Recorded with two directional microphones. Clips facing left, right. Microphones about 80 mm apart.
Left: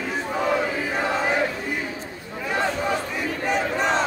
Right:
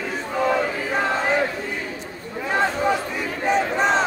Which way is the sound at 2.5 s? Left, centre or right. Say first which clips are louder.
Right 3 dB; right.